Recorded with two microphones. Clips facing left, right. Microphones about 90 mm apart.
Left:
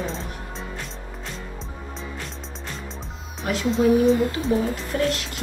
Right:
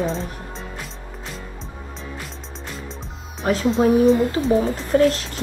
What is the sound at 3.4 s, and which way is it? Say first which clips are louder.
Speech: right 5 dB; 40° right (ahead or behind).